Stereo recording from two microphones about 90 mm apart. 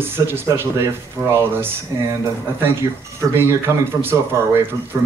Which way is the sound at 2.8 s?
35° right (ahead or behind).